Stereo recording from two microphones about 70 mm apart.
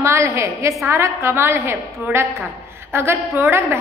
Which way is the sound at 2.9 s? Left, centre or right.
Right.